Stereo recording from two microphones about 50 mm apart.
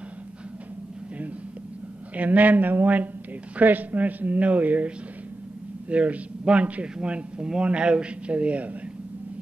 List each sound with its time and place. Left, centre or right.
2.1 s speech: right